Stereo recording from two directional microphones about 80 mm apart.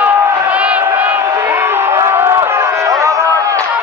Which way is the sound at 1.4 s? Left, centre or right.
Right.